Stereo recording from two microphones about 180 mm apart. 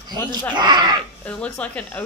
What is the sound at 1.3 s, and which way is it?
Speech, 5° left (ahead or behind).